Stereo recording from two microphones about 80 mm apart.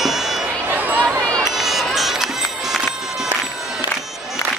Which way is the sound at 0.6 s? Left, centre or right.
Right.